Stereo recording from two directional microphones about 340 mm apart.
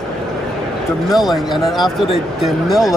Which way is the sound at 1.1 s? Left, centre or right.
Centre.